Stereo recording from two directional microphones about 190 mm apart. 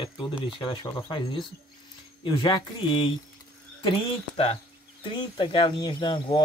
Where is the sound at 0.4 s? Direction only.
25° left (ahead or behind).